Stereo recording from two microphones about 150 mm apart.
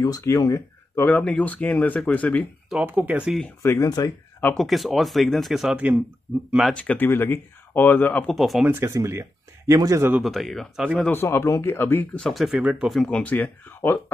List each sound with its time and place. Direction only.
0.0 s speech: 20° left (ahead or behind)
2.7 s speech: 10° right (ahead or behind)
3.6 s speech: 20° left (ahead or behind)
4.6 s speech: centre (ahead or behind)
8.7 s speech: 20° right (ahead or behind)
10.2 s speech: centre (ahead or behind)
11.0 s speech: 15° left (ahead or behind)